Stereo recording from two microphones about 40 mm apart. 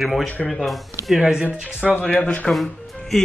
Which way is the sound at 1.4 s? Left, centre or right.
Right.